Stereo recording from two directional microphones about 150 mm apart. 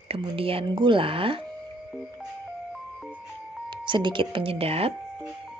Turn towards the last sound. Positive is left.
turn(degrees=-40)  # may be behind; listen again after turning